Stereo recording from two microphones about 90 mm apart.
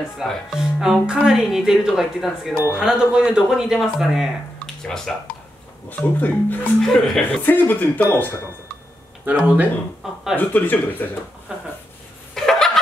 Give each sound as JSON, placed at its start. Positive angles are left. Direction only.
{"t": 0.2, "sound": "speech", "side_deg": -5}
{"t": 4.6, "sound": "a sound", "side_deg": 5}
{"t": 5.9, "sound": "speech", "side_deg": 20}
{"t": 6.8, "sound": "speech", "side_deg": 5}
{"t": 7.4, "sound": "speech", "side_deg": 20}
{"t": 9.2, "sound": "speech", "side_deg": -20}
{"t": 10.3, "sound": "speech", "side_deg": 20}
{"t": 11.5, "sound": "a sound", "side_deg": -10}
{"t": 12.4, "sound": "a sound", "side_deg": 5}